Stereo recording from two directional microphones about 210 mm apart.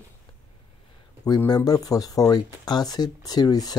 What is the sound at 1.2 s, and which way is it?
Speech, 20° left (ahead or behind).